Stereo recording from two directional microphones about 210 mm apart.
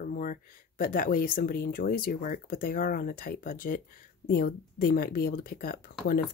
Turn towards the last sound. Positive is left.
turn(degrees=45)  # may be behind; listen again after turning